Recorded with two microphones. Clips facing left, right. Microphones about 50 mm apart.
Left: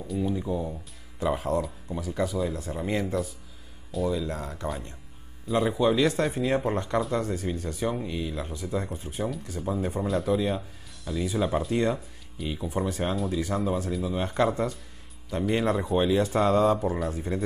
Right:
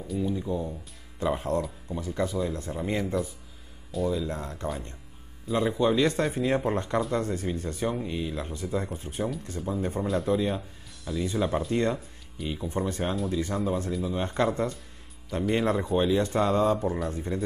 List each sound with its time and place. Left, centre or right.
0.0 s speech: centre